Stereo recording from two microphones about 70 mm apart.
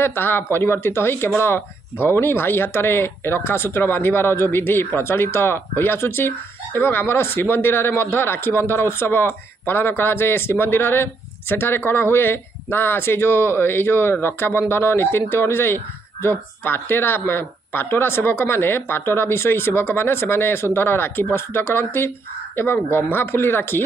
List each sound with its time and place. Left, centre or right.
0.0 s speech: left